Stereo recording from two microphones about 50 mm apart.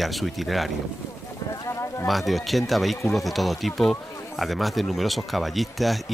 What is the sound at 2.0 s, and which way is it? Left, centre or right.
Speech, centre.